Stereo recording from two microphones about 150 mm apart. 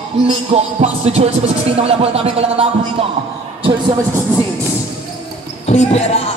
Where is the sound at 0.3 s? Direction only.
45° right (ahead or behind).